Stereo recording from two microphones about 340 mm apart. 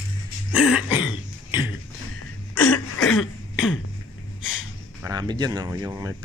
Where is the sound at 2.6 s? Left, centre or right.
Left.